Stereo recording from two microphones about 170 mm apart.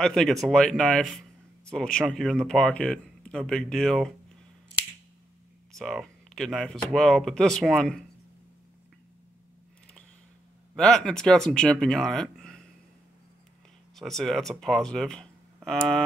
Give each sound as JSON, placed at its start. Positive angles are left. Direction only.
{"t": 0.0, "sound": "speech", "side_deg": 5}
{"t": 5.7, "sound": "speech", "side_deg": 0}
{"t": 10.8, "sound": "speech", "side_deg": 5}
{"t": 13.9, "sound": "speech", "side_deg": 0}